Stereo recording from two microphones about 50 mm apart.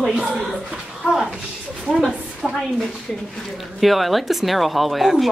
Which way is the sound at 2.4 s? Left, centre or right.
Centre.